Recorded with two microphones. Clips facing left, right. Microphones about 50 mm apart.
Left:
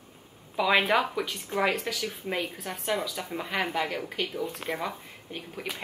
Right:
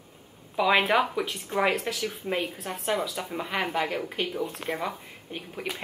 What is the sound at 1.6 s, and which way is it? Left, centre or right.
Speech, right.